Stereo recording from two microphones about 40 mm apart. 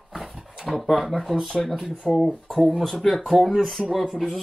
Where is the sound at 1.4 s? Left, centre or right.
Centre.